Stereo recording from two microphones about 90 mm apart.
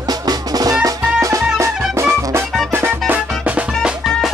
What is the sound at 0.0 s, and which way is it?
Music, 45° right (ahead or behind).